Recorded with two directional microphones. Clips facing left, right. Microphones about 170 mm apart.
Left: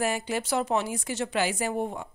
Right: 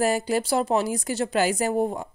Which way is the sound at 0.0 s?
35° right (ahead or behind).